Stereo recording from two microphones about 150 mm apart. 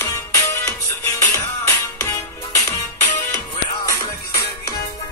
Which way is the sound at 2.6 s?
10° left (ahead or behind).